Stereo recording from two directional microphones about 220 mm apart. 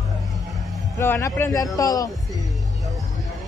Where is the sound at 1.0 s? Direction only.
10° left (ahead or behind).